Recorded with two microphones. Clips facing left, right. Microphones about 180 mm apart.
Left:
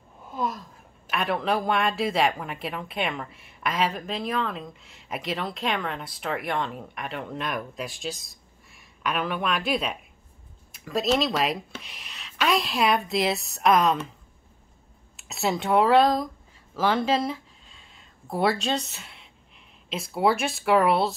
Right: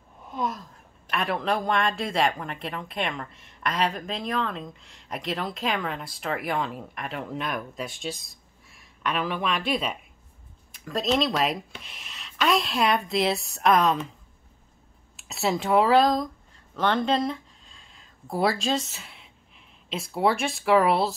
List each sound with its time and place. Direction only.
0.3 s a woman's voice: centre (ahead or behind)
15.1 s a woman's voice: centre (ahead or behind)